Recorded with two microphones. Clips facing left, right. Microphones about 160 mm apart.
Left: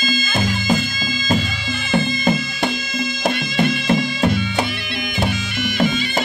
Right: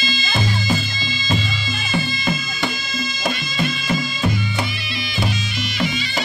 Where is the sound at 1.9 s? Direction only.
55° left (ahead or behind).